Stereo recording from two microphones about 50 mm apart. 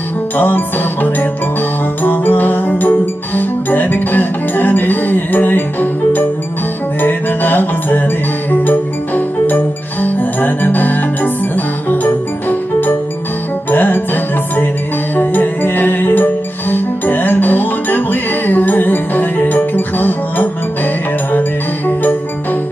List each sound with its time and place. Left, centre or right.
0.4 s music: left